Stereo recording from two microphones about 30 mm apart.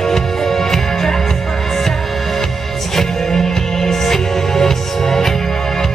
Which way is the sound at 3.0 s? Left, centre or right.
Centre.